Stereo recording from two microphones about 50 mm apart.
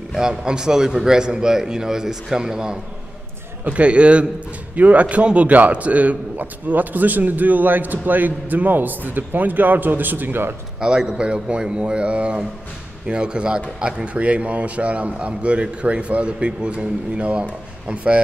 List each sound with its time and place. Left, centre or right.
0.3 s a man's voice: centre
3.6 s a man's voice: right
10.8 s a man's voice: centre